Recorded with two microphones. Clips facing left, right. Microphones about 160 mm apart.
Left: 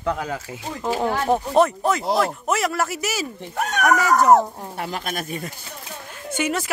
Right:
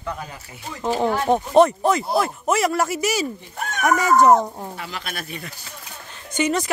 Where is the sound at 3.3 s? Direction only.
75° left (ahead or behind).